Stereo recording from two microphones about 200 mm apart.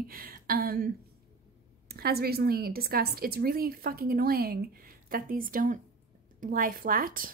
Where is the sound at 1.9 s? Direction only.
50° right (ahead or behind).